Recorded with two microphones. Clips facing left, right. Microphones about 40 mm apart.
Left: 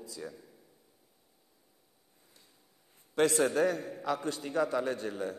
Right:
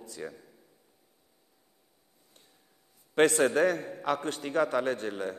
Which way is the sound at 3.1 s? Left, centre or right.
Right.